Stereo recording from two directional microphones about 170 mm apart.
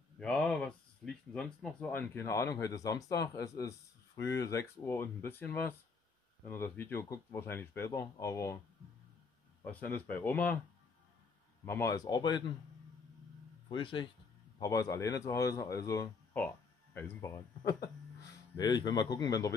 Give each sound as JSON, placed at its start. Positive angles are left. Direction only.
{"t": 0.2, "sound": "speech", "side_deg": 5}
{"t": 9.6, "sound": "speech", "side_deg": 10}
{"t": 11.6, "sound": "speech", "side_deg": 15}
{"t": 13.7, "sound": "speech", "side_deg": 30}